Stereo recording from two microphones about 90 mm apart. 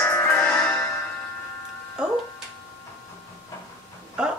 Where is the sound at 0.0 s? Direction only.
20° left (ahead or behind).